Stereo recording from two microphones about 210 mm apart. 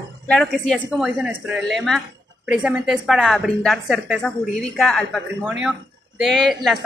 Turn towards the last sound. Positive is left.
turn(degrees=0)  # may be behind; listen again after turning